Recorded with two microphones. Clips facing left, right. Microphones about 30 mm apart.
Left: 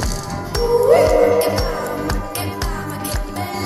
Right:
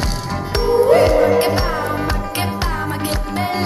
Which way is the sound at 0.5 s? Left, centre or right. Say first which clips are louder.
Even; right.